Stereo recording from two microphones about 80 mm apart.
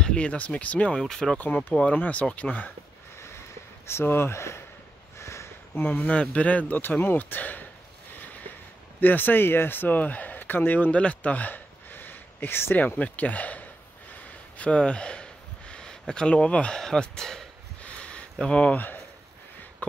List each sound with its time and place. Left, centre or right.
0.0 s speech: centre
1.4 s speech: left
3.8 s speech: left
5.2 s a sound: left
5.9 s speech: centre
9.0 s a man's voice: left; by 17.5 s centre
17.8 s a sound: centre